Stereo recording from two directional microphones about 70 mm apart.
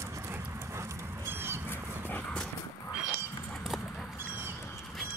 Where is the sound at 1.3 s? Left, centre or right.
Right.